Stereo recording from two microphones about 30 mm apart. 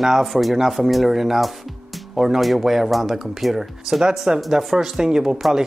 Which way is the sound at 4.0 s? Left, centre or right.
Right.